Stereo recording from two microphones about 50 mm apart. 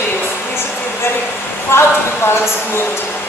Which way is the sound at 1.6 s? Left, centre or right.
Left.